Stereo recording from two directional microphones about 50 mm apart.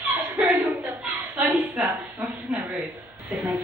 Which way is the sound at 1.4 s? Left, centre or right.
Right.